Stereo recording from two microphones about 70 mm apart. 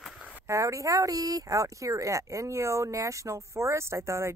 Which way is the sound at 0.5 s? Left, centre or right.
Right.